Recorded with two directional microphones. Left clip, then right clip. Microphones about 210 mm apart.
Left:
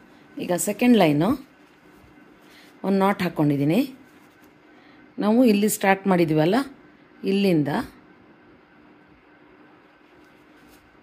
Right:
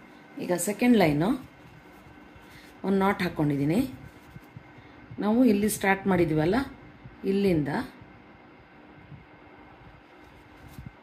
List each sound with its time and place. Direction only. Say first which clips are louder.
0.4 s speech: left 4 dB; 40° left (ahead or behind)
2.8 s speech: left 4 dB; 40° left (ahead or behind)
5.2 s a woman's voice: left 5 dB; 45° left (ahead or behind)